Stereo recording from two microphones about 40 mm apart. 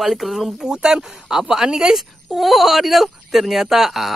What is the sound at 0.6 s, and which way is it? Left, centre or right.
Speech, centre.